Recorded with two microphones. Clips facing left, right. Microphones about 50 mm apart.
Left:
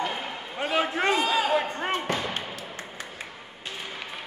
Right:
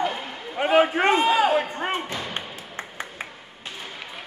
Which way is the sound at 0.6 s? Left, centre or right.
Right.